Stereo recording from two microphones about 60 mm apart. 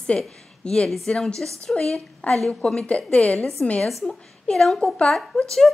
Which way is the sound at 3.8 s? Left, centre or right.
Centre.